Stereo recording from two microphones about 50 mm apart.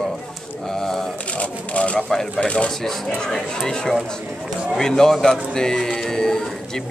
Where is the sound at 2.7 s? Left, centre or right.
Centre.